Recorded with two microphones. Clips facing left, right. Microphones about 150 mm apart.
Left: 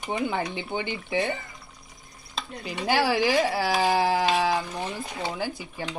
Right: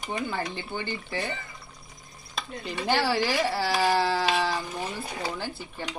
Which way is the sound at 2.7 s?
10° left (ahead or behind).